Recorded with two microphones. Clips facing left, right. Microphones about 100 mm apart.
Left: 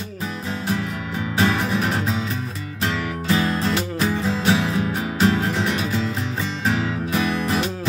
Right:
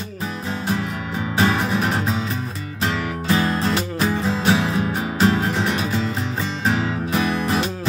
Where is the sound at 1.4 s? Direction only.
40° right (ahead or behind).